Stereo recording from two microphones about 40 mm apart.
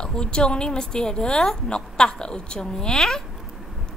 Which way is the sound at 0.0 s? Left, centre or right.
Left.